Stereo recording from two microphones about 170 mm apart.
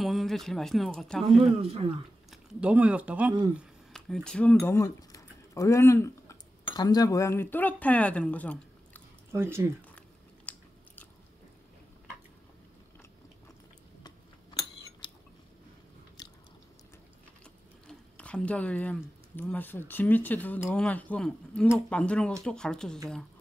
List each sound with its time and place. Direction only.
0.0 s speech: centre (ahead or behind)
1.6 s speech: 35° right (ahead or behind)
2.3 s speech: 5° right (ahead or behind)
3.9 s speech: 5° left (ahead or behind)
9.3 s speech: 15° right (ahead or behind)
10.4 s biting: 10° left (ahead or behind)
14.0 s a sound: 25° left (ahead or behind)
16.2 s biting: 25° left (ahead or behind)
17.8 s a sound: 5° left (ahead or behind)
19.3 s speech: 10° left (ahead or behind)